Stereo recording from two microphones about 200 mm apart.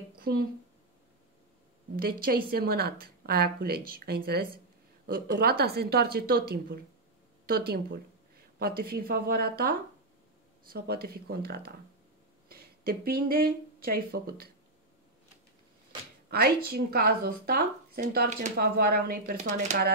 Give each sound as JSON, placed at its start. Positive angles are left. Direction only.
{"t": 0.2, "sound": "speech", "side_deg": -50}
{"t": 2.0, "sound": "speech", "side_deg": -45}
{"t": 16.3, "sound": "speech", "side_deg": -50}